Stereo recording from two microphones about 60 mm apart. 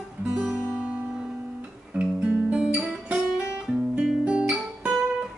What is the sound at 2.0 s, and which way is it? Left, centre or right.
Guitar, centre.